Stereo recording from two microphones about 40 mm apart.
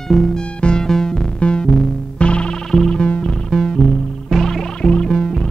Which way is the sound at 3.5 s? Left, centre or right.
Centre.